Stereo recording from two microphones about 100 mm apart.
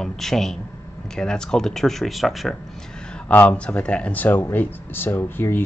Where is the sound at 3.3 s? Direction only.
15° left (ahead or behind).